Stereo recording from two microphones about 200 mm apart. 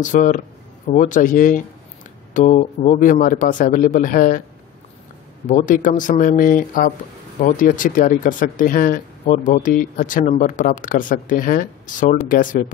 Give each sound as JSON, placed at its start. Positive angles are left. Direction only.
{"t": 0.0, "sound": "speech", "side_deg": 40}
{"t": 5.5, "sound": "speech", "side_deg": 40}